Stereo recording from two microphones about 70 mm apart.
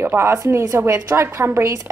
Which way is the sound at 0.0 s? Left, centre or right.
Right.